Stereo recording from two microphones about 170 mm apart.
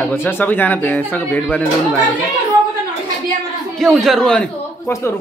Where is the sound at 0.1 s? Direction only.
15° left (ahead or behind).